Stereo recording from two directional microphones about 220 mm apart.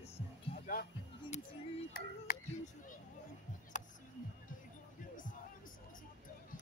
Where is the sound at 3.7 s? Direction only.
35° left (ahead or behind).